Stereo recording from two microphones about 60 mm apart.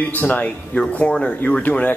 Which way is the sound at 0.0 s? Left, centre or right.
Left.